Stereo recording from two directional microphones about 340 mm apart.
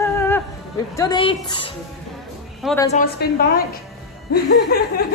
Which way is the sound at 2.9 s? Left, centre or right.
Left.